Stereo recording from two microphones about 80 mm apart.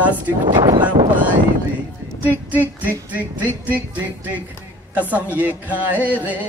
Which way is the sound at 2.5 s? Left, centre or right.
Right.